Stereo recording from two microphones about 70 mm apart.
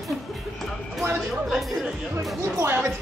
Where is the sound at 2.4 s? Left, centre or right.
Right.